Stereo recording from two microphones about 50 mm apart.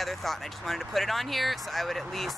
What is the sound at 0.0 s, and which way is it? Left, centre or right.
Speech, centre.